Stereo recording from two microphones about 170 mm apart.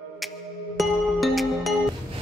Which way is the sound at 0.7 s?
Centre (ahead or behind).